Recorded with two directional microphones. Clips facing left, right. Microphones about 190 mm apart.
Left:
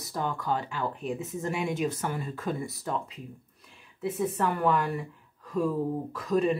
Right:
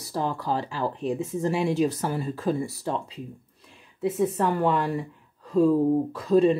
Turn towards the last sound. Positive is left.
turn(degrees=-30)  # may be behind; listen again after turning